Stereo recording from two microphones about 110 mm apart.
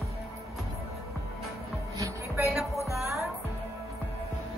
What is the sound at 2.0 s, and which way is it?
Music, 30° right (ahead or behind).